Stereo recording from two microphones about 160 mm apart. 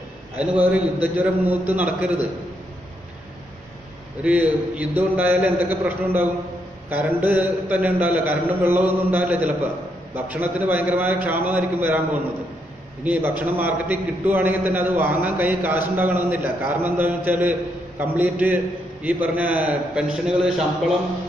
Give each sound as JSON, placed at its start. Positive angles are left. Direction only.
{"t": 0.4, "sound": "a man's voice", "side_deg": -10}
{"t": 4.2, "sound": "a man's voice", "side_deg": -10}